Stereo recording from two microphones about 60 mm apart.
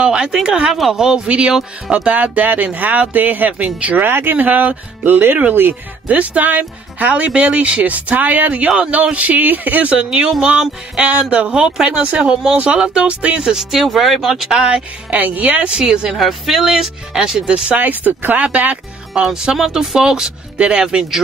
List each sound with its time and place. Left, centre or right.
0.0 s speech: centre
8.6 s speech: centre
8.9 s speech: right
9.9 s speech: centre
14.3 s speech: centre
15.1 s speech: right
16.1 s speech: centre
17.5 s speech: right
19.2 s speech: centre